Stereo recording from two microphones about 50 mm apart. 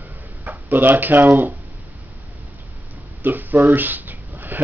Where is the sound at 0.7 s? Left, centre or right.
Right.